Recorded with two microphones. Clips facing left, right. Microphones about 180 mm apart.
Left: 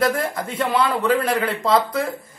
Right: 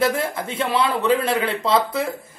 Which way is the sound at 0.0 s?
25° right (ahead or behind).